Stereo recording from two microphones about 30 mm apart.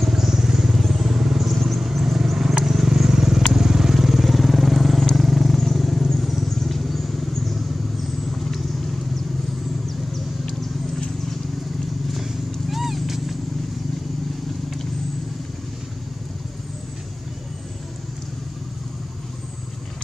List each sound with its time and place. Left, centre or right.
0.1 s vehicle: centre
0.7 s vehicle: centre
12.1 s vehicle: centre